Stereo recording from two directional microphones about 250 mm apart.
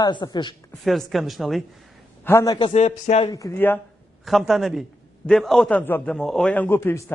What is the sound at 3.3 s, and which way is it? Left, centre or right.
A man's voice, centre.